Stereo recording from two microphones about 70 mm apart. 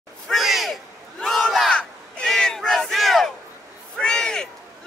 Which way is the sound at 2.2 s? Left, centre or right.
Centre.